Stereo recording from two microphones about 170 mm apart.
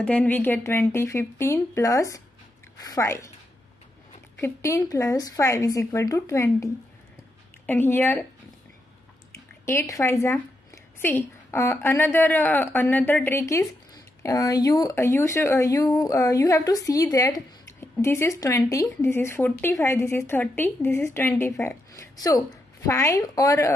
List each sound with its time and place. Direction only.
0.0 s a woman's voice: 5° left (ahead or behind)
4.4 s a woman's voice: 15° left (ahead or behind)
9.3 s a woman's voice: 15° left (ahead or behind)